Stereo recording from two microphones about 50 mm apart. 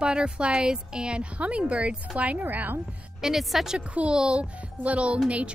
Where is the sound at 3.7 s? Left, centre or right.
Right.